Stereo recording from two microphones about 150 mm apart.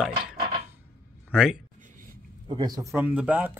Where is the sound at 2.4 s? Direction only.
25° right (ahead or behind).